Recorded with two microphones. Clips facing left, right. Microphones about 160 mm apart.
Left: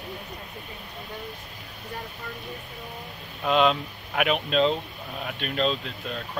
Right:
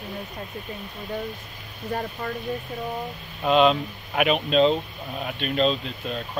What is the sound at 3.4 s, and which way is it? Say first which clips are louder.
Speech: right 3 dB; 20° right (ahead or behind).